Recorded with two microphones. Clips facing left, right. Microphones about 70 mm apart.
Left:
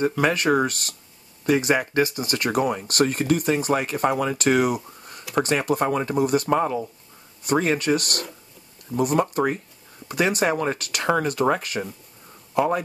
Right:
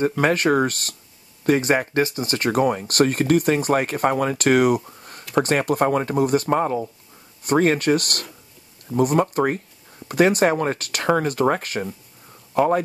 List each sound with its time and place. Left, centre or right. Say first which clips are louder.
0.0 s speech: right 2 dB; right
7.4 s speech: right 3 dB; right